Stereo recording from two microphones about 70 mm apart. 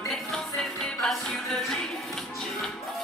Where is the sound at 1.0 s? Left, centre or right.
Centre.